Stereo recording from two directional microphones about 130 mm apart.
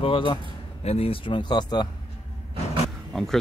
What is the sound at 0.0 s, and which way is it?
Speech, 40° left (ahead or behind).